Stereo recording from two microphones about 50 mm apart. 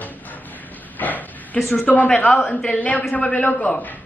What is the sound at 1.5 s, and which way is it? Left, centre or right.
Speech, centre.